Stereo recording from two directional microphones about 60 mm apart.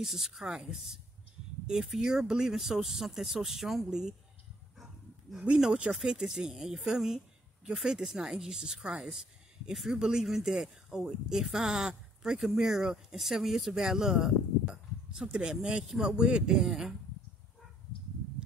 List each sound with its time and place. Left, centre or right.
0.0 s speech: centre
5.6 s speech: centre
14.7 s chink: centre
15.8 s speech: centre
16.5 s speech: centre